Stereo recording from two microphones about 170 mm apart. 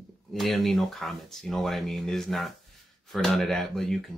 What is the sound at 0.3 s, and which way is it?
Speech, centre (ahead or behind).